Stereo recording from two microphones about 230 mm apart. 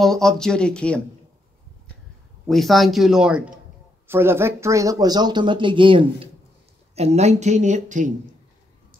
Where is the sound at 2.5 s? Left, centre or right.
Centre; by 8.1 s right.